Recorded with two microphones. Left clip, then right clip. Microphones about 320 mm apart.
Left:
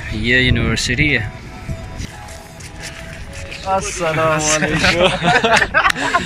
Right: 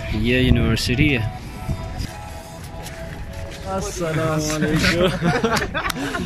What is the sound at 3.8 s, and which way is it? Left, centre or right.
Speech, centre.